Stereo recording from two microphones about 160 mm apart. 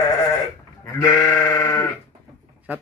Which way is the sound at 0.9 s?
20° left (ahead or behind).